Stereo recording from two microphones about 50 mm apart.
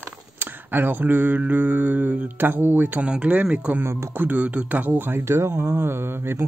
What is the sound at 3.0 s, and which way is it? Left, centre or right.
Speech, right.